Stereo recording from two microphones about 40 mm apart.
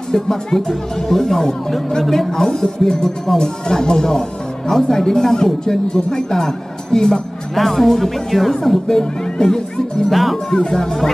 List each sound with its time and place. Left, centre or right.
0.1 s speech: centre
7.5 s speech: centre
10.1 s speech: centre
10.7 s speech: centre